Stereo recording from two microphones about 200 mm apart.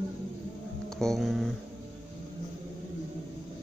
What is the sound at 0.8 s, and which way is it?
Speech, centre (ahead or behind).